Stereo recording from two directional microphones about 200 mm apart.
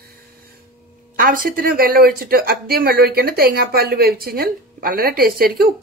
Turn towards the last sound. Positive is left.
turn(degrees=-50)  # may be behind; listen again after turning